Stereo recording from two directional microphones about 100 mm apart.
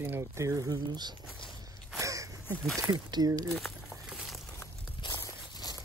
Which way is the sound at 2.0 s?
35° right (ahead or behind).